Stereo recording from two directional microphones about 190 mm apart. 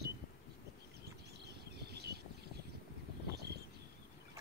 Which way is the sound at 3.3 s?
60° right (ahead or behind).